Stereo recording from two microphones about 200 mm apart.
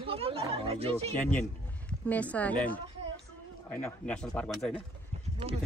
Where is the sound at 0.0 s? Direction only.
30° right (ahead or behind).